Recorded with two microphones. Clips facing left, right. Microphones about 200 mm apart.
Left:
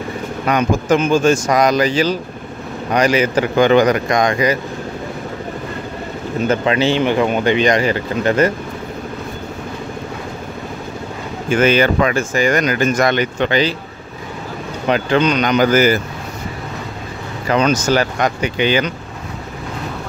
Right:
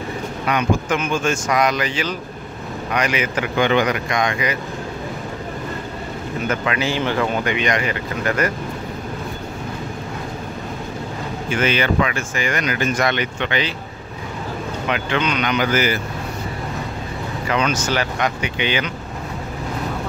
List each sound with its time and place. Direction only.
0.5 s speech: 40° left (ahead or behind)
6.4 s speech: 30° left (ahead or behind)
7.4 s speech: 35° left (ahead or behind)
11.5 s speech: 45° left (ahead or behind)
14.9 s speech: 35° left (ahead or behind)
17.5 s speech: 40° left (ahead or behind)